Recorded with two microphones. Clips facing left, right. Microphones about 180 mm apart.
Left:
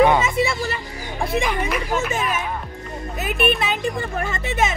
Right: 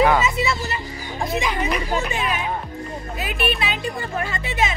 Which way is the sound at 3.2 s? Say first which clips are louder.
Left 4 dB; 50° left (ahead or behind).